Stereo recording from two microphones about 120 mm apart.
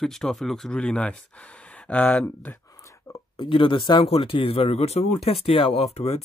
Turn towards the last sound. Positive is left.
turn(degrees=60)  # may be behind; listen again after turning